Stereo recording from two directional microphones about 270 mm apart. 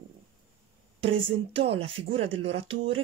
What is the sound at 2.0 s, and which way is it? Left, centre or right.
Speech, right.